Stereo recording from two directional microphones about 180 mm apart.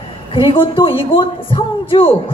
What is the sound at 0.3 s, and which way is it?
A man's voice, 30° left (ahead or behind).